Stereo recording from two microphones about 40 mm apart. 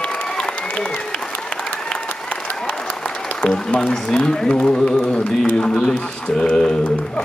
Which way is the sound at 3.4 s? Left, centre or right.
Left.